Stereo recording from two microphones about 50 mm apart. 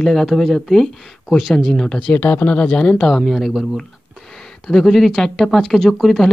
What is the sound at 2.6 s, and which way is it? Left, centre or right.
Speech, left.